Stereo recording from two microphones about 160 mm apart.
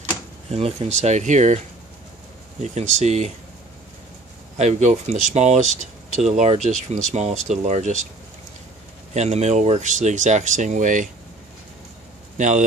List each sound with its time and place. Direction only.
0.5 s speech: 40° right (ahead or behind)
2.6 s speech: 45° right (ahead or behind)
4.6 s speech: 45° right (ahead or behind)
9.1 s speech: 45° right (ahead or behind)
12.4 s speech: 50° right (ahead or behind)